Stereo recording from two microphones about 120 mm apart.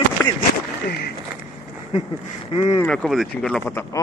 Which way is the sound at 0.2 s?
15° left (ahead or behind).